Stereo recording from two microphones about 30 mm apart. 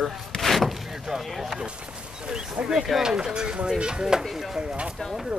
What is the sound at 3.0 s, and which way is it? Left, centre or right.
Speech, right.